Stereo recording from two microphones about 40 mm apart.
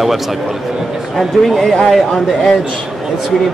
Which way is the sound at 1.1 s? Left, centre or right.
Centre.